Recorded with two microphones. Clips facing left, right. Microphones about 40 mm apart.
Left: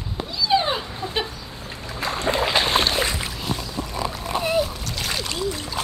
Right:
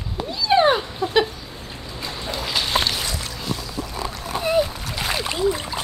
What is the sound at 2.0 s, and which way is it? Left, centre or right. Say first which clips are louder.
Boat: left 7 dB; left.